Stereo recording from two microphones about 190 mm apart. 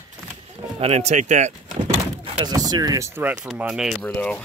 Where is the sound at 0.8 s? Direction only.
35° right (ahead or behind).